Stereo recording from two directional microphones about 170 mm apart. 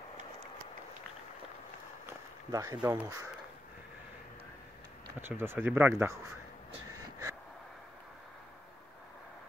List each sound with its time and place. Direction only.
2.0 s speech: 20° right (ahead or behind)
5.2 s speech: 15° right (ahead or behind)
6.9 s a sound: 20° right (ahead or behind)